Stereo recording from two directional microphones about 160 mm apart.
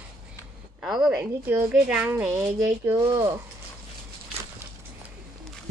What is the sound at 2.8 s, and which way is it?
Speech, 25° right (ahead or behind).